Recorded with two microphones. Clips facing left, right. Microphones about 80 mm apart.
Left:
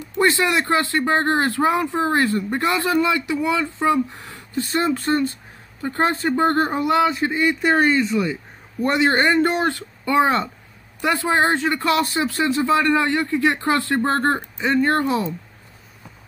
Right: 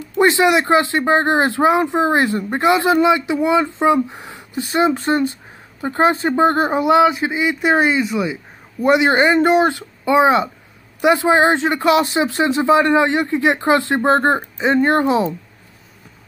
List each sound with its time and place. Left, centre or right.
0.2 s speech: right